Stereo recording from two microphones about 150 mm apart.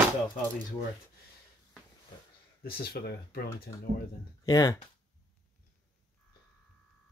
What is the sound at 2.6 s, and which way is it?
Speech, 90° left.